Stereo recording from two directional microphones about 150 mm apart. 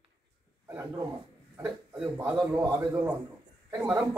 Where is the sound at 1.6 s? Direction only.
10° right (ahead or behind).